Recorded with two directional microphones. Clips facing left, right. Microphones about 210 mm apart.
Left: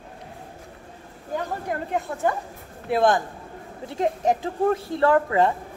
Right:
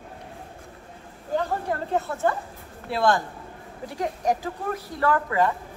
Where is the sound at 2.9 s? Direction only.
20° left (ahead or behind).